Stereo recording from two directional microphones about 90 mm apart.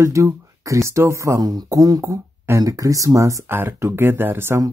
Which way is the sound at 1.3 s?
45° right (ahead or behind).